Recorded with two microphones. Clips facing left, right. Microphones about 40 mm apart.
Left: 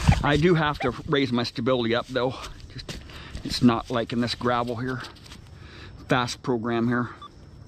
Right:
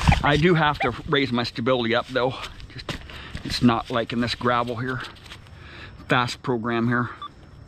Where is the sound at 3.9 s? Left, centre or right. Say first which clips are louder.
Right 2 dB; right.